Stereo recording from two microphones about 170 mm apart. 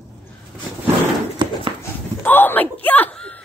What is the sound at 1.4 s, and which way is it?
Clip-clop, 30° right (ahead or behind).